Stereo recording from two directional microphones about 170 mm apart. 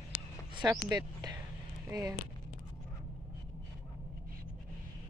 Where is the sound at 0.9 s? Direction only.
25° right (ahead or behind).